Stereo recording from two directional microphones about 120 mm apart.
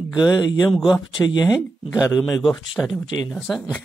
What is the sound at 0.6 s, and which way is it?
Speech, centre (ahead or behind).